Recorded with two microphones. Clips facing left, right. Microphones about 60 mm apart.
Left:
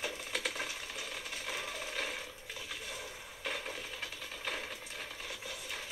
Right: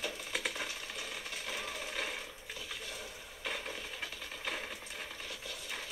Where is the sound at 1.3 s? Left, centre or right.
Centre.